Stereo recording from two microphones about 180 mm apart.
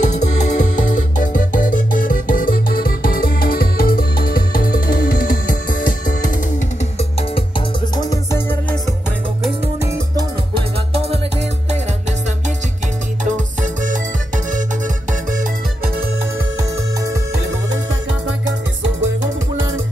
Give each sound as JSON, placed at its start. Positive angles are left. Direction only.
{"t": 0.0, "sound": "music", "side_deg": 40}
{"t": 7.0, "sound": "music", "side_deg": 30}
{"t": 10.9, "sound": "music", "side_deg": -35}
{"t": 13.2, "sound": "music", "side_deg": -45}
{"t": 19.5, "sound": "music", "side_deg": -90}